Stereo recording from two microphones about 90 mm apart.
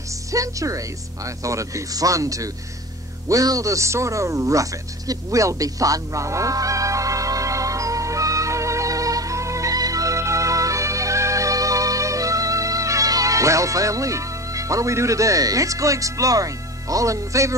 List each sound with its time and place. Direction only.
0.3 s speech: 40° right (ahead or behind)
3.3 s music: 40° right (ahead or behind)